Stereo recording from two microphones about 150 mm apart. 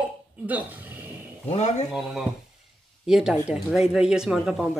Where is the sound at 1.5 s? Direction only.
50° left (ahead or behind).